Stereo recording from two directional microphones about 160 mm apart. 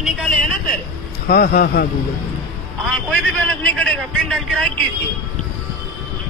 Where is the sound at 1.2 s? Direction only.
70° left (ahead or behind).